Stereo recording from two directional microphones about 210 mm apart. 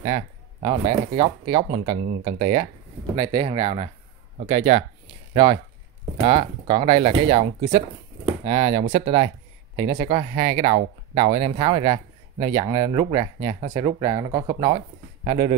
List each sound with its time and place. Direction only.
0.0 s speech: 25° right (ahead or behind)